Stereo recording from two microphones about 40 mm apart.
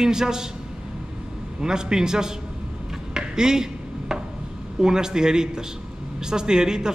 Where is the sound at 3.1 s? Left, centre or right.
Centre.